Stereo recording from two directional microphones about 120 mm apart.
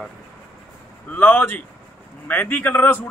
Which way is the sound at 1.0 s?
15° left (ahead or behind).